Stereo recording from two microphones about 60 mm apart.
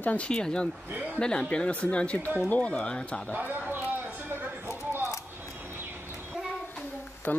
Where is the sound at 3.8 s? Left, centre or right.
Right.